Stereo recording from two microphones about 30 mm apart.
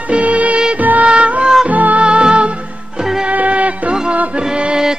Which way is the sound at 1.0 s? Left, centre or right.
Right.